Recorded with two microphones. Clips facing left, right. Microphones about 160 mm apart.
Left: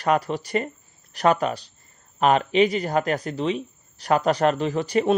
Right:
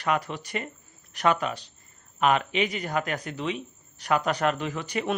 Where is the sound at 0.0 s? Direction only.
35° left (ahead or behind).